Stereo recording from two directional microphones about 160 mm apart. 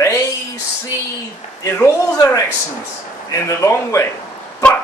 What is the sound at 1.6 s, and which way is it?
Speech, 15° left (ahead or behind).